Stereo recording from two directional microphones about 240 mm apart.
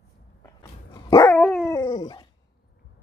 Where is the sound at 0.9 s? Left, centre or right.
Centre.